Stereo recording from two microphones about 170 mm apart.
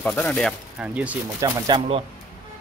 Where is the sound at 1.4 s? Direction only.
30° right (ahead or behind).